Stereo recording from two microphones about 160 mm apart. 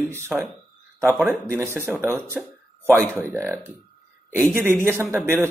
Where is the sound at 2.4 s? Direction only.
Centre (ahead or behind).